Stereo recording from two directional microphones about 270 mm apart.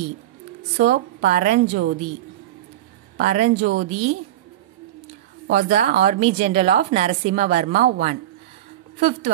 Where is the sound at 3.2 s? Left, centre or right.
Right.